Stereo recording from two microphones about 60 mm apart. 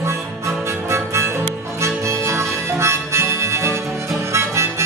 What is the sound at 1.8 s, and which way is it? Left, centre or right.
Harmonica, right.